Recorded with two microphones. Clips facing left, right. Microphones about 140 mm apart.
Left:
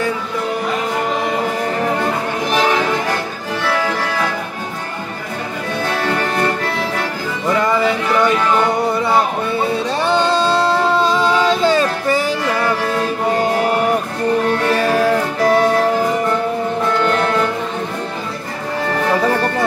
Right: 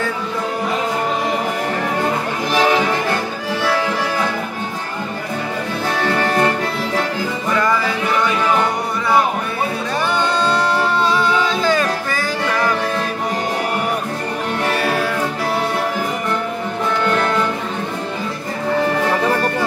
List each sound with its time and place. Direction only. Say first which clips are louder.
7.5 s music: left 3 dB; 25° left (ahead or behind)
10.0 s singing: left 4 dB; 25° left (ahead or behind)